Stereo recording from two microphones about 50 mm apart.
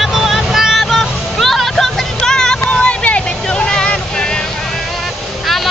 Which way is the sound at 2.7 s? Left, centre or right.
Left.